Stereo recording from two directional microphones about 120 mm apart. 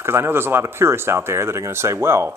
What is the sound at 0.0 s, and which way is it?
Speech, 20° right (ahead or behind).